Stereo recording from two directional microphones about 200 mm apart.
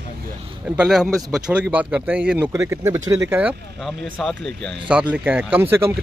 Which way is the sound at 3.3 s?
5° right (ahead or behind).